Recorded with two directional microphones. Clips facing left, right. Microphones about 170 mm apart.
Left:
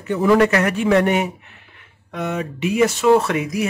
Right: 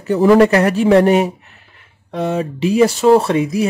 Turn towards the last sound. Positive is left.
turn(degrees=-30)  # may be behind; listen again after turning